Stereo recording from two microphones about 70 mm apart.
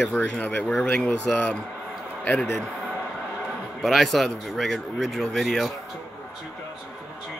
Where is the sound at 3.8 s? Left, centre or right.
Centre.